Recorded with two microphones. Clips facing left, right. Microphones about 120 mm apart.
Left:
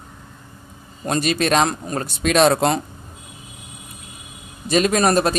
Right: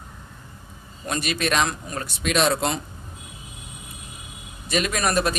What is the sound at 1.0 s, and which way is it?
A man's voice, 35° left (ahead or behind).